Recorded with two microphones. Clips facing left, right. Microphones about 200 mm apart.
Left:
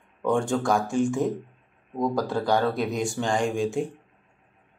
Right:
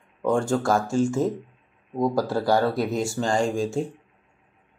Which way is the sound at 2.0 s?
5° right (ahead or behind).